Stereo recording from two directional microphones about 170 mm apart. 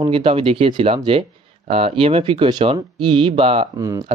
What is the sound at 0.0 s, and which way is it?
Speech, 30° right (ahead or behind).